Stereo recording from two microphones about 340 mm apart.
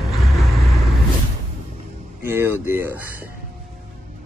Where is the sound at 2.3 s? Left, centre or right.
Centre.